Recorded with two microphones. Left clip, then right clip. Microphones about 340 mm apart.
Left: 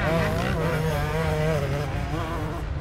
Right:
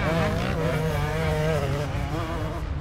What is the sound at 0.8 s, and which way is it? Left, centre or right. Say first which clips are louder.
Insect: left 1 dB; centre.